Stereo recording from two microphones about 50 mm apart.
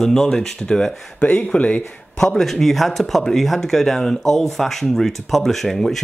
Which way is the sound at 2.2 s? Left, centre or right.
Centre.